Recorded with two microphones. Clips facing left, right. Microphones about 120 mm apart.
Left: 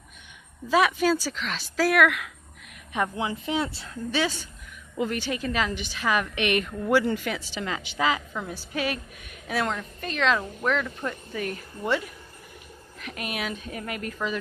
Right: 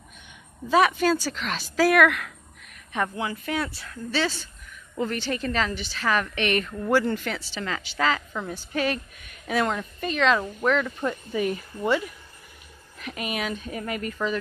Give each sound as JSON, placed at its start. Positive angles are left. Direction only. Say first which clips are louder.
{"t": 0.7, "sound": "a woman's voice", "louder": "right 1 dB", "side_deg": 0}
{"t": 2.9, "sound": "a woman's voice", "louder": "even", "side_deg": 15}
{"t": 8.3, "sound": "a woman's voice", "louder": "right 2 dB", "side_deg": 5}